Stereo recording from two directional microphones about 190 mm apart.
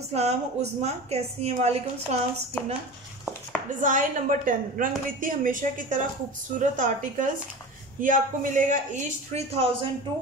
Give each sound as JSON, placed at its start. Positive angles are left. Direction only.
{"t": 0.1, "sound": "a woman's voice", "side_deg": -35}
{"t": 3.8, "sound": "a woman's voice", "side_deg": -45}